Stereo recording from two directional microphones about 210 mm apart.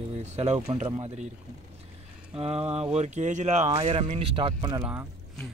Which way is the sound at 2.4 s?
30° right (ahead or behind).